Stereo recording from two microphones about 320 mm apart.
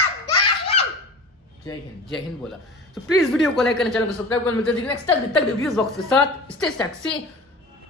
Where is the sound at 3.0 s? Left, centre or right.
Centre.